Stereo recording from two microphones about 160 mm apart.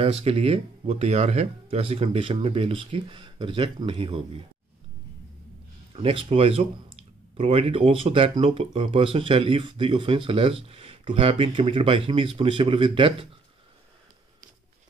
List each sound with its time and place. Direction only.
0.0 s speech: 35° right (ahead or behind)
5.9 s speech: 35° right (ahead or behind)